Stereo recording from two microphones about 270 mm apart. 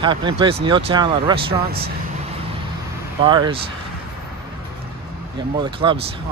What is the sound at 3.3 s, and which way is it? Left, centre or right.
Speech, centre.